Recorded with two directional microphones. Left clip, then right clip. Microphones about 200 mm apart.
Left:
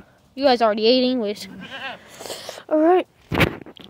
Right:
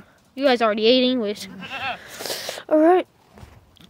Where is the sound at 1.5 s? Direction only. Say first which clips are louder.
Right 4 dB; 45° right (ahead or behind).